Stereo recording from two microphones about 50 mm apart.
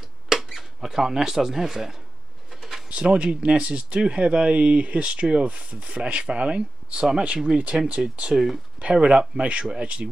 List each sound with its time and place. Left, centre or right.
0.3 s speech: centre
2.5 s a sound: centre
2.9 s speech: right
8.0 s speech: centre
8.7 s speech: right